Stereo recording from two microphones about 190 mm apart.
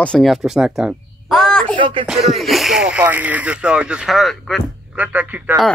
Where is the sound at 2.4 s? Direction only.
Centre (ahead or behind).